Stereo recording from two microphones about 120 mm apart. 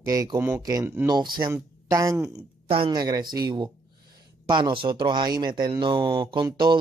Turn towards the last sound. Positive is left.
turn(degrees=-40)  # may be behind; listen again after turning